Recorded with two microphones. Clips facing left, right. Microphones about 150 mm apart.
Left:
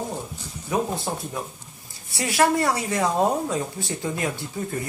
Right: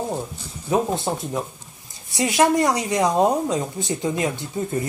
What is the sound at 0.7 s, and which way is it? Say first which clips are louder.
Speech: right 4 dB; 25° right (ahead or behind).